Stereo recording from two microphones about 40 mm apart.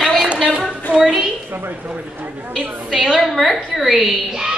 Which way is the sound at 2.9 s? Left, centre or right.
Centre.